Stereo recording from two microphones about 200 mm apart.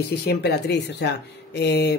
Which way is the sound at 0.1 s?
55° left (ahead or behind).